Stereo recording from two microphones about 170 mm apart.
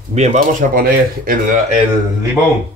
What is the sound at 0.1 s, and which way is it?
Speech, 40° right (ahead or behind).